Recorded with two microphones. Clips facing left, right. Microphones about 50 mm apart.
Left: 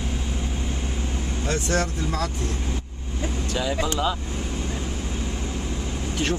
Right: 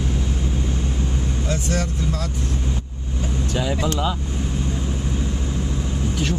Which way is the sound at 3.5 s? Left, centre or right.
Centre.